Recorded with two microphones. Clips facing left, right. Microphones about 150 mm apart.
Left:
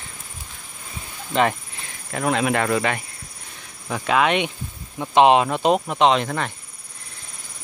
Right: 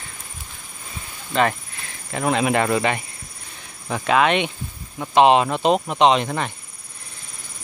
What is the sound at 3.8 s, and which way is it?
Speech, centre (ahead or behind).